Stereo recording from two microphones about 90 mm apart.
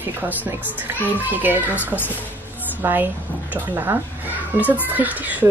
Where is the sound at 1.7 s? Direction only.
20° left (ahead or behind).